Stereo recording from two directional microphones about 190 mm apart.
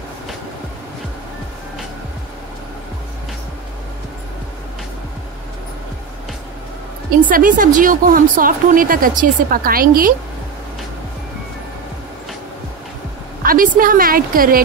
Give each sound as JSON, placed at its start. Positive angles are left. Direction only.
{"t": 7.2, "sound": "a woman's voice", "side_deg": -45}
{"t": 13.4, "sound": "a woman's voice", "side_deg": -50}